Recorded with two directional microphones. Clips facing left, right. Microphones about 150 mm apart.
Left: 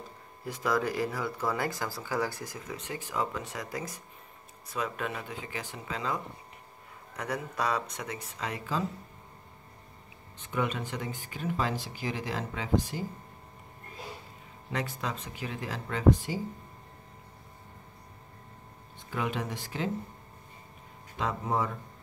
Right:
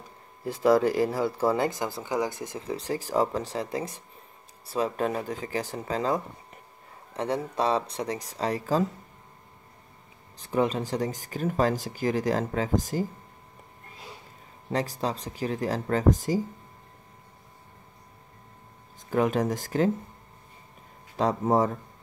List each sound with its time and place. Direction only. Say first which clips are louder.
0.5 s speech: right 8 dB; 30° right (ahead or behind)
7.2 s speech: right 6 dB; 30° right (ahead or behind)
10.3 s speech: right 6 dB; 35° right (ahead or behind)
14.7 s speech: right 6 dB; 35° right (ahead or behind)
18.9 s speech: right 9 dB; 40° right (ahead or behind)
21.2 s speech: right 7 dB; 40° right (ahead or behind)